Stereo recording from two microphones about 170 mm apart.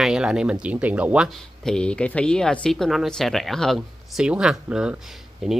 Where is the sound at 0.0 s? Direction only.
5° right (ahead or behind).